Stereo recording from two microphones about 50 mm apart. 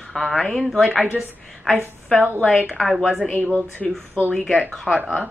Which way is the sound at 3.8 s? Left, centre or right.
Centre.